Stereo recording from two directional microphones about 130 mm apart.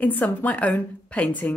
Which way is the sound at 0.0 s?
15° left (ahead or behind).